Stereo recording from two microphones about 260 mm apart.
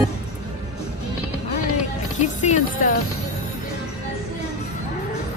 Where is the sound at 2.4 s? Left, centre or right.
Left.